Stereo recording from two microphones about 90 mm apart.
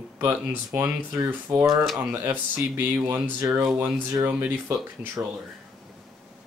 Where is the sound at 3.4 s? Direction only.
35° right (ahead or behind).